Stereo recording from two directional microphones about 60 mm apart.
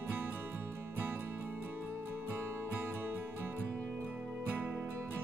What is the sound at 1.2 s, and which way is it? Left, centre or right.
Music, right.